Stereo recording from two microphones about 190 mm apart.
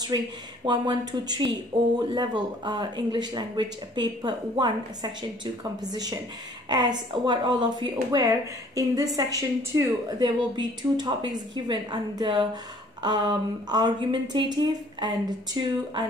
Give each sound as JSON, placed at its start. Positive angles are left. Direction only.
{"t": 0.7, "sound": "a woman's voice", "side_deg": -25}